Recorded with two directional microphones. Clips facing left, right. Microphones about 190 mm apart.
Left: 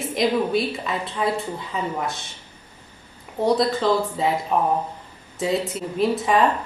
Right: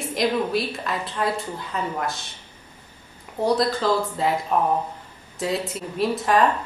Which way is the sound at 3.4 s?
Centre (ahead or behind).